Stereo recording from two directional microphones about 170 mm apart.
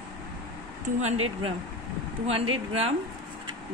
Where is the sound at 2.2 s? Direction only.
35° right (ahead or behind).